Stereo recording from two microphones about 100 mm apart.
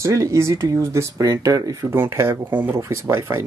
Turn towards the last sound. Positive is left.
turn(degrees=-30)  # may be behind; listen again after turning